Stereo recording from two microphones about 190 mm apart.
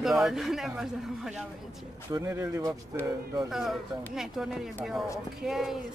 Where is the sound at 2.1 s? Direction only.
15° right (ahead or behind).